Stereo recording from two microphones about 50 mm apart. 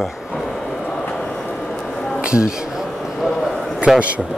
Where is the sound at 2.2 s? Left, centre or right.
Centre.